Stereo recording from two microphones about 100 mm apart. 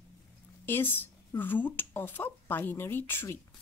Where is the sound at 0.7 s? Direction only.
20° left (ahead or behind).